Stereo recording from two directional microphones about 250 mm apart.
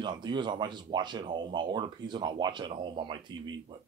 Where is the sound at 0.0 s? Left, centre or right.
Centre.